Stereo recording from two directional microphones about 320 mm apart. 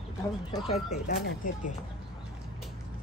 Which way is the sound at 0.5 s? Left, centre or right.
Centre.